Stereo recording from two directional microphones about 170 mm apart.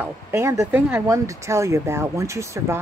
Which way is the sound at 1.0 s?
20° right (ahead or behind).